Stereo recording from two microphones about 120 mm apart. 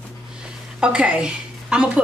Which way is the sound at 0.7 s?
5° right (ahead or behind).